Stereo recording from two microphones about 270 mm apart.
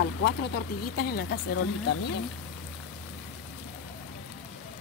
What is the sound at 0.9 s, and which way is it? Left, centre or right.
Speech, left.